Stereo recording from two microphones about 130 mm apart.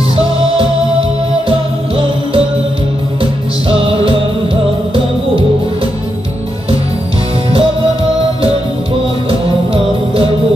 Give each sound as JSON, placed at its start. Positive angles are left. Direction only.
{"t": 1.5, "sound": "music", "side_deg": -45}
{"t": 3.6, "sound": "music", "side_deg": -45}
{"t": 9.3, "sound": "music", "side_deg": -45}